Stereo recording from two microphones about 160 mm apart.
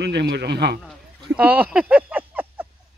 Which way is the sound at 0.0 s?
90° right.